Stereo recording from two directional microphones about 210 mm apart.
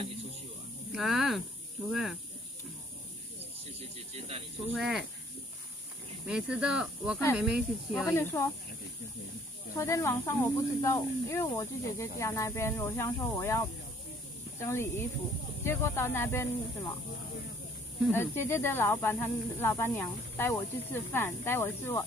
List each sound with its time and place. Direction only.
0.9 s speech: centre (ahead or behind)
4.1 s speech: 30° right (ahead or behind)
4.7 s speech: centre (ahead or behind)
6.2 s speech: 5° right (ahead or behind)
8.1 s speech: 10° left (ahead or behind)
9.8 s speech: 15° left (ahead or behind)
18.1 s speech: 10° left (ahead or behind)